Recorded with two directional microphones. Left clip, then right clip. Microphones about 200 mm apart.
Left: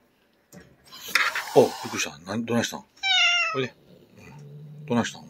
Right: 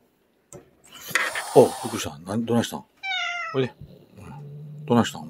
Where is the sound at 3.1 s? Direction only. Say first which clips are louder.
Left 7 dB; 50° left (ahead or behind).